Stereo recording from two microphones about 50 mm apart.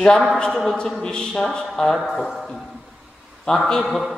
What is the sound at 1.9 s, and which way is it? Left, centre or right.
Speech, centre.